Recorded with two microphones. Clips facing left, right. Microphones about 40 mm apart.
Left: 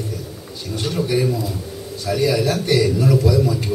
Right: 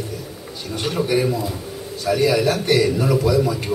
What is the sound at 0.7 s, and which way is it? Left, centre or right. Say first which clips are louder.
A man's voice: right 1 dB; centre.